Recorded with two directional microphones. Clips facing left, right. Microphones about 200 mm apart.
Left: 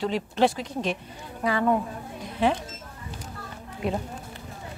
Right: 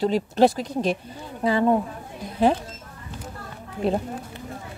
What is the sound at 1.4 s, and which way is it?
Speech, 25° right (ahead or behind).